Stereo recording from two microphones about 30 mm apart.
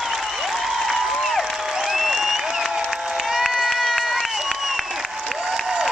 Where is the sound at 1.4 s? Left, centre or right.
Centre.